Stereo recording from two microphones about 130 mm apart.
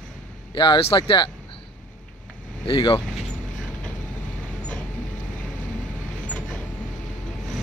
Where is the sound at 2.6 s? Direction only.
40° left (ahead or behind).